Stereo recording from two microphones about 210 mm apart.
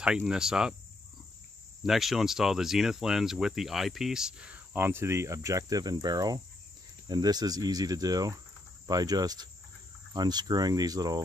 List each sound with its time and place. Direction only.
0.0 s speech: 5° right (ahead or behind)
1.8 s speech: centre (ahead or behind); by 6.4 s 20° right (ahead or behind)
7.1 s cricket: 20° right (ahead or behind)